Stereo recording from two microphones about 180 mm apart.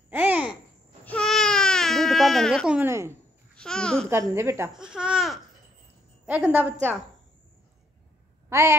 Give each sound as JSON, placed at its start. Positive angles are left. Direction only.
{"t": 0.1, "sound": "babbling", "side_deg": -10}
{"t": 1.0, "sound": "baby cry", "side_deg": 5}
{"t": 3.5, "sound": "speech", "side_deg": 5}
{"t": 4.1, "sound": "a woman's voice", "side_deg": -15}
{"t": 4.7, "sound": "a woman's voice", "side_deg": -5}
{"t": 8.5, "sound": "a sound", "side_deg": -15}